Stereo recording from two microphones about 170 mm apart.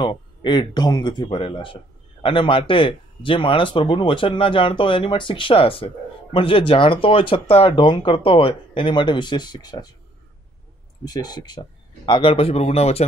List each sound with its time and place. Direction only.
0.0 s speech: 30° left (ahead or behind)
11.1 s speech: 25° left (ahead or behind)